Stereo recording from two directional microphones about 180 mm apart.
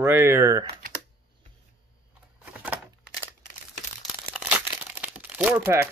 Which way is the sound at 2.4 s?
10° right (ahead or behind).